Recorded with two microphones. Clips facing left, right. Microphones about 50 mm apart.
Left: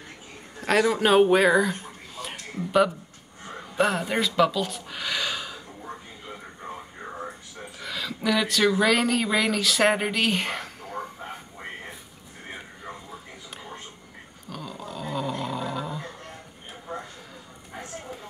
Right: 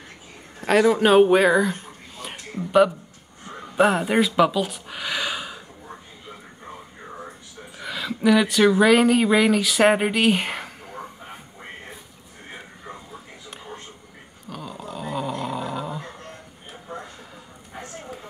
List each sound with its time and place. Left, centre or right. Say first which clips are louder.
0.6 s speech: right 4 dB; centre
2.3 s a sound: right 4 dB; centre
3.7 s speech: right 5 dB; centre
7.8 s speech: right 6 dB; centre
14.5 s dog: right 2 dB; centre